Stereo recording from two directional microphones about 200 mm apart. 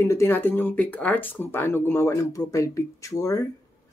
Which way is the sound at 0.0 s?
15° left (ahead or behind).